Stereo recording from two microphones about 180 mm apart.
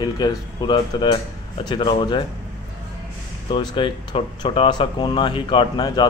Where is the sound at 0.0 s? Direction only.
25° left (ahead or behind).